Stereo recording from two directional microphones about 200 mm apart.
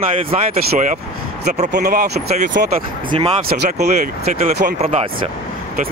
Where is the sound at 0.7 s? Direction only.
40° right (ahead or behind).